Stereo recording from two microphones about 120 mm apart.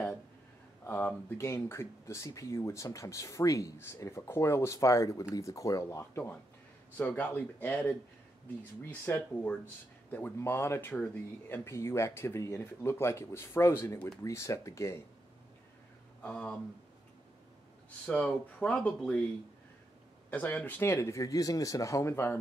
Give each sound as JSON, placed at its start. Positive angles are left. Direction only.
{"t": 0.8, "sound": "speech", "side_deg": 20}
{"t": 16.2, "sound": "a sound", "side_deg": 10}
{"t": 18.0, "sound": "speech", "side_deg": 10}
{"t": 20.2, "sound": "speech", "side_deg": 15}